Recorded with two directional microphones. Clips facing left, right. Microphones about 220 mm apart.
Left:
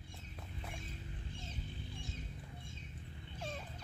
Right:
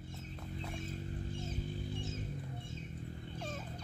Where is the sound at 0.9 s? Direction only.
45° right (ahead or behind).